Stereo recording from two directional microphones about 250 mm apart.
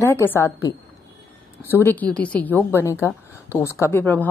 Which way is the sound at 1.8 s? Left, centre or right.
Centre.